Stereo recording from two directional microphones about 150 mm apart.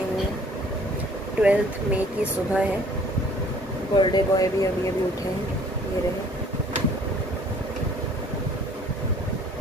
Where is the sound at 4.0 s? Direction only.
25° left (ahead or behind).